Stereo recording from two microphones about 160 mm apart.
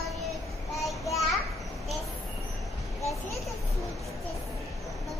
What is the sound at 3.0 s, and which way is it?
Children playing, 20° left (ahead or behind).